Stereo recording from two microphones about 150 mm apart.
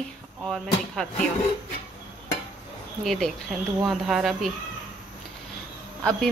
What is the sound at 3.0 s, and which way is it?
Speech, centre (ahead or behind).